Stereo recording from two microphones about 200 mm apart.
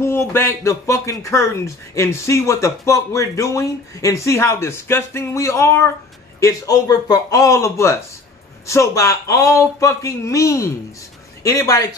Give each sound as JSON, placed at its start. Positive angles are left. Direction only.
{"t": 0.0, "sound": "speech", "side_deg": 10}